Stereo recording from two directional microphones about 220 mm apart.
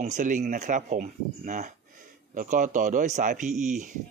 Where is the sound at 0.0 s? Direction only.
35° right (ahead or behind).